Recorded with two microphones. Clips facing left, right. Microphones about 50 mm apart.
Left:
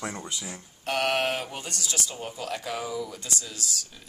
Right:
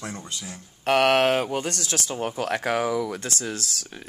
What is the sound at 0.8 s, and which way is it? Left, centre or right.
Speech, right.